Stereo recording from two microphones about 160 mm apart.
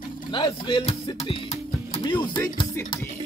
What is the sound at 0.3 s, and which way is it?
Music, 30° left (ahead or behind).